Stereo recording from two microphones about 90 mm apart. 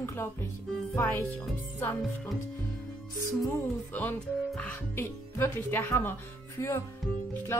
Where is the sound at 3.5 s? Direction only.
20° left (ahead or behind).